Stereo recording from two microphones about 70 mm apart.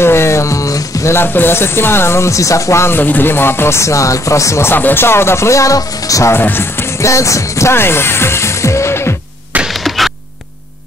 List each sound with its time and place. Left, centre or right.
0.0 s music: left
1.1 s speech: left
3.0 s speech: left
6.3 s speech: left
7.1 s speech: left
9.8 s music: centre